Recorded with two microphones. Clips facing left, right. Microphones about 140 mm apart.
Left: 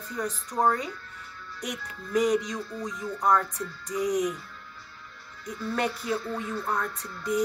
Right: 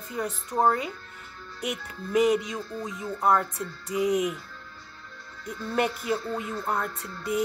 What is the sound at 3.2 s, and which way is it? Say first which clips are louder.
Music: right 1 dB; 5° right (ahead or behind).